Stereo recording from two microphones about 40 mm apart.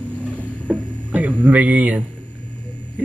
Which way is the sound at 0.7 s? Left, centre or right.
Right.